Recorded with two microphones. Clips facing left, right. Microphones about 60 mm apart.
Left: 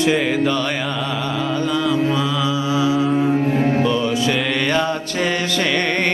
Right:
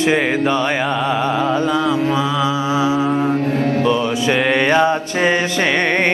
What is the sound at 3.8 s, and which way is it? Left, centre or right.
Music, right.